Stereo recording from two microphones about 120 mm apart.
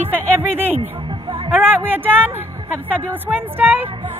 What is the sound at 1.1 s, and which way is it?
Music, 45° right (ahead or behind).